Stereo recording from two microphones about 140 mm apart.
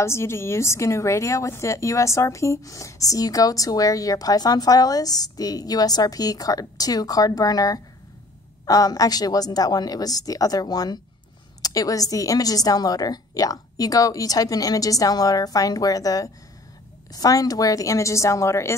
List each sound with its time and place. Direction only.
0.0 s a woman's voice: 20° left (ahead or behind)